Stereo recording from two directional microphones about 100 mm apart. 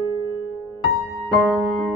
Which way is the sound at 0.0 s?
30° right (ahead or behind).